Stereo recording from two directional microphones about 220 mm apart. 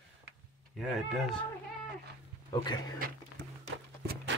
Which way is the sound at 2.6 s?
20° left (ahead or behind).